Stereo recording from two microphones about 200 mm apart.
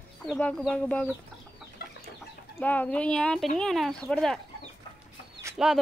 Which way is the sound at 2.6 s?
10° left (ahead or behind).